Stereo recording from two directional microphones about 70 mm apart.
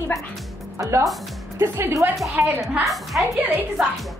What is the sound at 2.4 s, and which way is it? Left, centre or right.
Speech, right.